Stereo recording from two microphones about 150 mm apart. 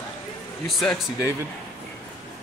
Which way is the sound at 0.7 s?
Centre (ahead or behind).